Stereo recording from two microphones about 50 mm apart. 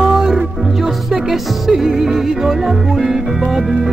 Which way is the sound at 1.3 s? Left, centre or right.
Centre.